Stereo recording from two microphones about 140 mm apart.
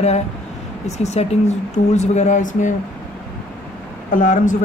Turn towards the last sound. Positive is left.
turn(degrees=65)  # may be behind; listen again after turning